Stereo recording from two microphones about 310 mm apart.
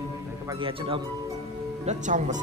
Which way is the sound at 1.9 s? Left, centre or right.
Right.